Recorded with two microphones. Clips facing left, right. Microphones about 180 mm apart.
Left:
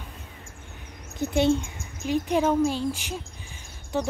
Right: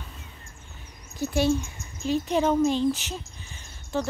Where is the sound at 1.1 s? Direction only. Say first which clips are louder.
Left 2 dB; 20° left (ahead or behind).